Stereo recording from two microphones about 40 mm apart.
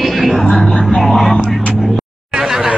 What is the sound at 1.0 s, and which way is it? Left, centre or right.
Vehicle, centre.